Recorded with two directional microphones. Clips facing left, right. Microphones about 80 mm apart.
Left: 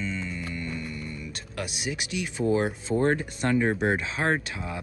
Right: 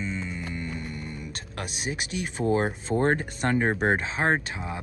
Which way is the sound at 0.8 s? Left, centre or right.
Right.